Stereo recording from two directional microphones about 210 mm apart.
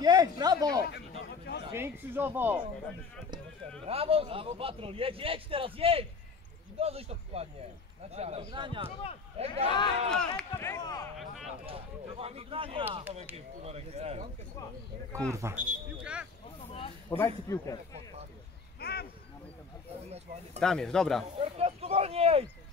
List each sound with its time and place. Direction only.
0.0 s a sound: 20° right (ahead or behind)
0.8 s a sound: 55° left (ahead or behind)
1.7 s speech: 10° right (ahead or behind)
3.8 s a man's voice: 25° right (ahead or behind)
9.7 s speech: 20° left (ahead or behind)
10.0 s speech: 5° left (ahead or behind)
11.1 s a sound: centre (ahead or behind)
11.6 s a man's voice: 25° right (ahead or behind)
15.3 s speech: 10° right (ahead or behind)
17.1 s speech: 10° left (ahead or behind)
18.8 s a sound: 50° left (ahead or behind)
20.6 s speech: 5° left (ahead or behind)
21.4 s speech: 30° right (ahead or behind)